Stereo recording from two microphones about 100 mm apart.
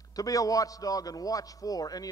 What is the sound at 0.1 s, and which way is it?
A man's voice, 35° left (ahead or behind).